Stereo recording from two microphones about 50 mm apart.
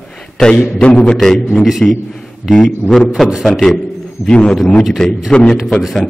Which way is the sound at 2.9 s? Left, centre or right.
Centre.